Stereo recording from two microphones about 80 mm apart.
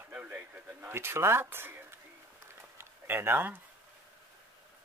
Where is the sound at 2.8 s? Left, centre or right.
Right.